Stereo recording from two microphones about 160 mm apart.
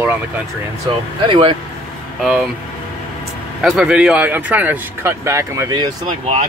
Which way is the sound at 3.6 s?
5° right (ahead or behind).